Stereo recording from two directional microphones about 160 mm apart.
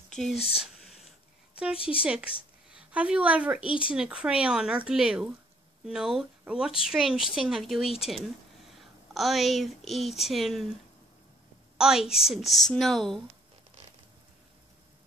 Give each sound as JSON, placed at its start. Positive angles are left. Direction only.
{"t": 0.1, "sound": "speech", "side_deg": 0}
{"t": 0.4, "sound": "speech", "side_deg": 40}
{"t": 1.8, "sound": "speech", "side_deg": 35}
{"t": 2.7, "sound": "a woman's voice", "side_deg": -5}
{"t": 11.8, "sound": "speech", "side_deg": -5}